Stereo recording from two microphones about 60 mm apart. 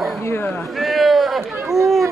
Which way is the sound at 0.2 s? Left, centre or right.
Left.